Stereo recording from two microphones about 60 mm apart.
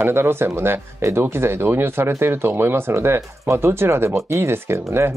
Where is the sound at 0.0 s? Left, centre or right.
Right.